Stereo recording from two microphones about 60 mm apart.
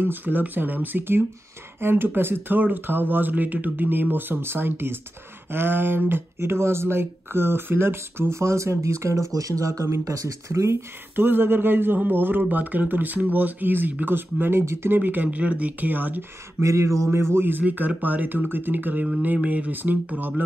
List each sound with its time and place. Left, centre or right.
0.0 s speech: right
11.1 s speech: right
14.6 s speech: right
15.0 s speech: right
16.6 s speech: right
17.1 s speech: right